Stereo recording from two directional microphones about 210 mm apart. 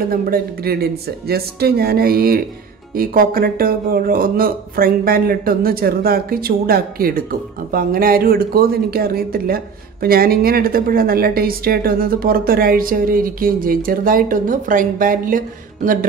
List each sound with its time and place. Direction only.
0.1 s speech: 45° right (ahead or behind)